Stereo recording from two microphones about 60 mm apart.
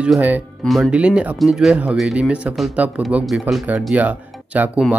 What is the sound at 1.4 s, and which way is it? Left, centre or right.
Speech, centre.